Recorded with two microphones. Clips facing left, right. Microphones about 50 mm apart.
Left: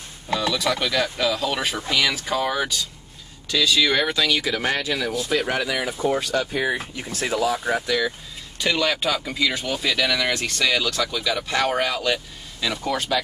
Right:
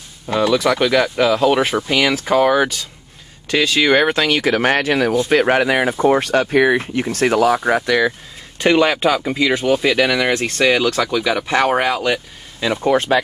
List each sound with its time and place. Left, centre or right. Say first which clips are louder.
0.3 s speech: right 7 dB; right
8.5 s speech: right 8 dB; right
12.8 s speech: right 9 dB; right